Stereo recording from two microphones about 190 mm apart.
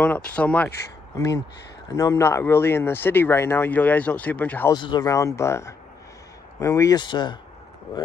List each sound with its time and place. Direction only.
0.0 s speech: 5° left (ahead or behind)
4.7 s speech: 20° left (ahead or behind)